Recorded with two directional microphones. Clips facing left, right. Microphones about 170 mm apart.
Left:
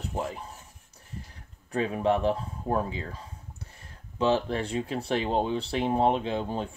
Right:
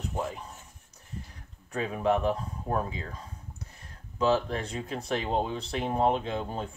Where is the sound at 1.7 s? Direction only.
35° left (ahead or behind).